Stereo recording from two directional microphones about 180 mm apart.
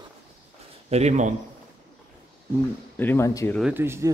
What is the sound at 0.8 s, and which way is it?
Speech, 35° right (ahead or behind).